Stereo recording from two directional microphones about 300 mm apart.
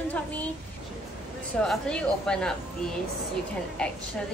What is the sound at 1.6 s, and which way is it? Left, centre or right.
A woman's voice, centre.